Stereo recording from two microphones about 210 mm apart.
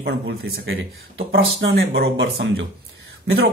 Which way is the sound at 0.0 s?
50° right (ahead or behind).